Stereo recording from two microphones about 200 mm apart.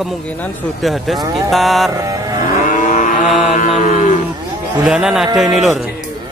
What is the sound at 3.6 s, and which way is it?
Livestock, 35° left (ahead or behind).